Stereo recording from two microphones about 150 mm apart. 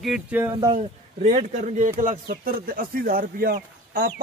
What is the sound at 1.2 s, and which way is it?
Speech, 50° right (ahead or behind).